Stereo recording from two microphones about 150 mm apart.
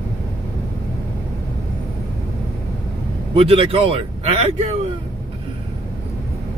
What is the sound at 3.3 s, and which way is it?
Speech, 40° right (ahead or behind).